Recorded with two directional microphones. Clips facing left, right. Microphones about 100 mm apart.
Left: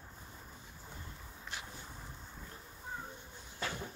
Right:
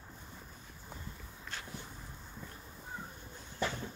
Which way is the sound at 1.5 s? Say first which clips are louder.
Even; 15° left (ahead or behind).